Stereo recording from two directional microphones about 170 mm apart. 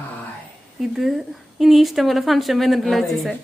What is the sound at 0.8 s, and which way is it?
A woman's voice, centre (ahead or behind).